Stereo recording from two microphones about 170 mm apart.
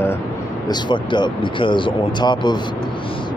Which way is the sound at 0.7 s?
25° left (ahead or behind).